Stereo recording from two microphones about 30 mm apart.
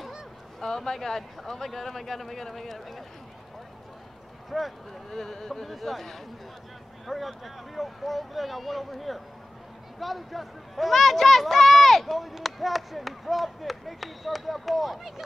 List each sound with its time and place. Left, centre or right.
0.6 s speech: centre
4.5 s speech: centre
5.1 s speech: centre